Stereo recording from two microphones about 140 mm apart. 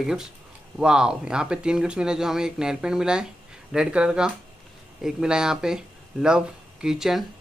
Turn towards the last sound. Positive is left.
turn(degrees=-5)  # may be behind; listen again after turning